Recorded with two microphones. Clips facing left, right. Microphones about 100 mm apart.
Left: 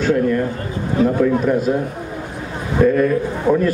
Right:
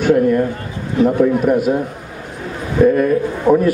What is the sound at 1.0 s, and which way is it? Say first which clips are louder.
Speech: right 3 dB; 15° right (ahead or behind).